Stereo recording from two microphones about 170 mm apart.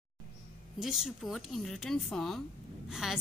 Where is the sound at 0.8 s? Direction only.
5° right (ahead or behind).